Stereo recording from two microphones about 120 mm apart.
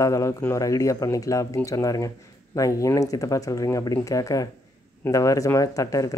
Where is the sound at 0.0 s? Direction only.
25° left (ahead or behind).